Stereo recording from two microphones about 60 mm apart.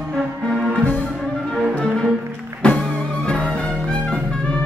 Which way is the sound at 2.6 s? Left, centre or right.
Centre.